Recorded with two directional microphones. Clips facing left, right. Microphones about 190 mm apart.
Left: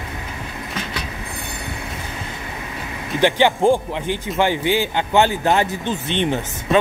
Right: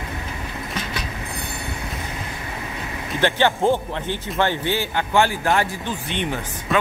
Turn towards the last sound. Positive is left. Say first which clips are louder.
# left 5 dB
turn(degrees=25)  # may be behind; listen again after turning